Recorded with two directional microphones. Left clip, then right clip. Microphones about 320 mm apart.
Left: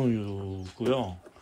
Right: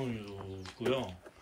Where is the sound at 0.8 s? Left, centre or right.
Centre.